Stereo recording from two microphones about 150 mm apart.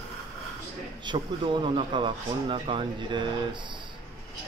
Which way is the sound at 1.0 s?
30° right (ahead or behind).